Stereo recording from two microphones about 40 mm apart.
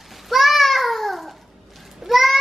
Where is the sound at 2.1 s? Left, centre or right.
Centre.